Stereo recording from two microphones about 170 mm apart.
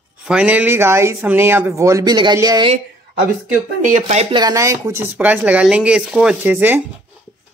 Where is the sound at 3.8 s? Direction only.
45° right (ahead or behind).